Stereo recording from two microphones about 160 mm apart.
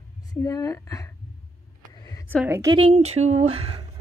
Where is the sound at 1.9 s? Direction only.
25° left (ahead or behind).